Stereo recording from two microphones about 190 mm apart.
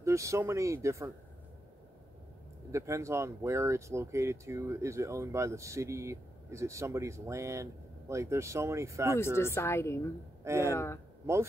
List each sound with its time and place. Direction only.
0.0 s speech: 15° right (ahead or behind)
2.7 s speech: 15° right (ahead or behind)
9.2 s a woman's voice: 15° left (ahead or behind)
10.4 s speech: 15° right (ahead or behind)
10.7 s a woman's voice: 15° left (ahead or behind)